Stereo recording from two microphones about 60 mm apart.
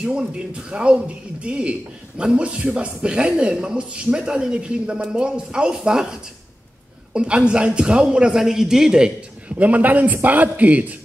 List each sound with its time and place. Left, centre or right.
0.0 s speech: centre
7.2 s speech: centre
9.6 s a man's voice: right